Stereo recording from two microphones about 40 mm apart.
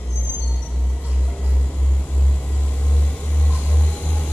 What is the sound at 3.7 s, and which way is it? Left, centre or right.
Vehicle, left.